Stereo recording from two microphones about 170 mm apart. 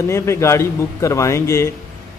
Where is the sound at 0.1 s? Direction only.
15° left (ahead or behind).